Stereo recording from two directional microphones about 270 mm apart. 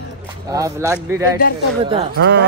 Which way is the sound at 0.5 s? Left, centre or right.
Centre.